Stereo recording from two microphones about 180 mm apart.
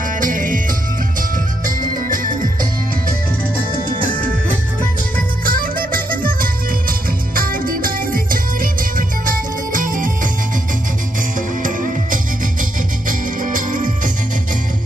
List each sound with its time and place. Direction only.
0.2 s music: 50° right (ahead or behind)
1.8 s music: 50° right (ahead or behind)
5.4 s music: 50° right (ahead or behind)
11.6 s music: 50° right (ahead or behind)
13.4 s music: 45° right (ahead or behind)